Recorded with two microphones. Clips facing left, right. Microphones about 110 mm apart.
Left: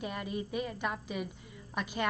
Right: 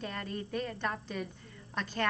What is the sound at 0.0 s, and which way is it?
Speech, 10° left (ahead or behind).